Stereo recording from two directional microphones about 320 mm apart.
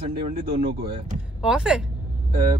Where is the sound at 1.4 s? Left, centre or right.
Centre.